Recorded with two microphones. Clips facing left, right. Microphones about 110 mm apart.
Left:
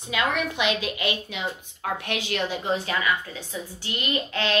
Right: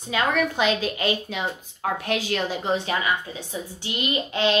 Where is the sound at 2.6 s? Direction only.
25° right (ahead or behind).